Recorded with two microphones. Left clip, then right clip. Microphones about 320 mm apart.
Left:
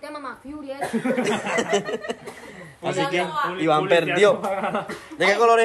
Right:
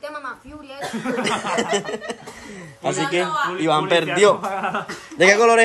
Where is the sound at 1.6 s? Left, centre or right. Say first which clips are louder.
Even; centre.